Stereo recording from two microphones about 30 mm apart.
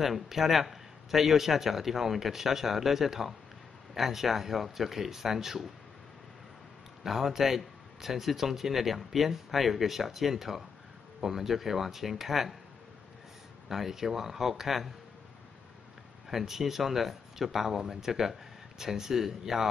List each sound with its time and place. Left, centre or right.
0.0 s speech: centre
7.0 s speech: centre
13.7 s speech: centre
16.3 s speech: centre